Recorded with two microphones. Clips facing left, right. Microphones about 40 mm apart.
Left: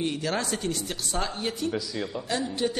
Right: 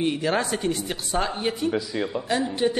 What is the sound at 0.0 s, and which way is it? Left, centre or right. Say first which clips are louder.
Speech: right 5 dB; right.